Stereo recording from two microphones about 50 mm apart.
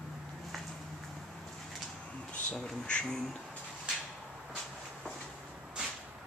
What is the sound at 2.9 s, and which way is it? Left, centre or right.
Speech, centre.